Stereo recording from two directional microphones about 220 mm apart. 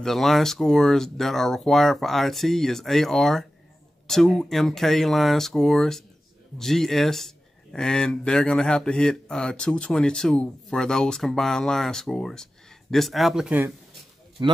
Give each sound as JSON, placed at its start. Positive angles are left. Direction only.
{"t": 0.0, "sound": "speech", "side_deg": 0}
{"t": 14.4, "sound": "speech", "side_deg": -20}